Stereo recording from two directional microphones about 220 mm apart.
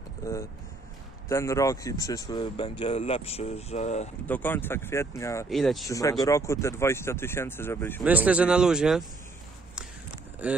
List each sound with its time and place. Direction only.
0.2 s speech: 15° left (ahead or behind); by 4.1 s 30° left (ahead or behind)
4.3 s speech: 10° left (ahead or behind)
5.5 s speech: centre (ahead or behind)
5.9 s speech: 15° left (ahead or behind)
8.0 s speech: 5° right (ahead or behind)
10.4 s speech: 5° right (ahead or behind)